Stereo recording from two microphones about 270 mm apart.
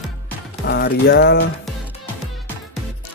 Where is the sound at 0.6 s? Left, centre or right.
Left.